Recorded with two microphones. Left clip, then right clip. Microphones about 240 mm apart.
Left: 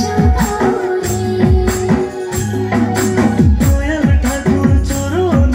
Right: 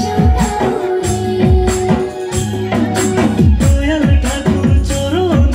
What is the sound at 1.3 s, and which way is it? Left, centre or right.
Music, right.